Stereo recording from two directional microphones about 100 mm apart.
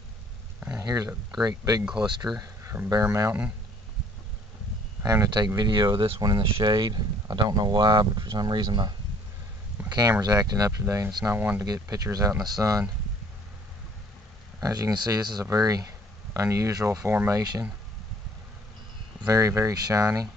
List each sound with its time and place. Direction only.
0.7 s speech: 35° right (ahead or behind)
3.1 s speech: 25° right (ahead or behind)
5.0 s a man's voice: 30° right (ahead or behind)
5.6 s speech: 50° right (ahead or behind); by 11.1 s 30° right (ahead or behind)
11.2 s speech: 20° right (ahead or behind)
11.6 s speech: 40° right (ahead or behind)
14.6 s speech: 40° right (ahead or behind)
19.2 s speech: 30° right (ahead or behind)